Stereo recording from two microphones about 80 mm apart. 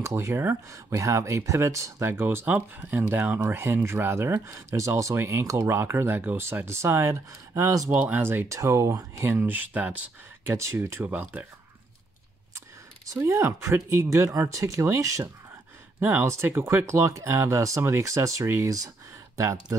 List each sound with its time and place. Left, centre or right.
0.0 s speech: right
7.9 s speech: right
8.5 s speech: right
9.5 s speech: centre
10.4 s speech: right
11.1 s speech: right
12.5 s speech: right
16.0 s speech: right